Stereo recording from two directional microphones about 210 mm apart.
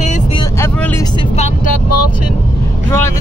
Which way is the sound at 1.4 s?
30° left (ahead or behind).